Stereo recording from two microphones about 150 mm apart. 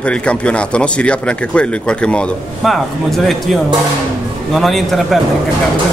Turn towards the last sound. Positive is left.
turn(degrees=0)  # may be behind; listen again after turning